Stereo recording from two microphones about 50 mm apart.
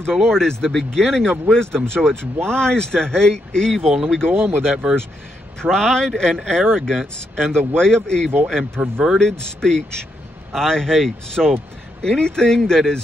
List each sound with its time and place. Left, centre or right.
0.0 s speech: centre
4.3 s speech: right
4.8 s speech: centre
5.6 s speech: centre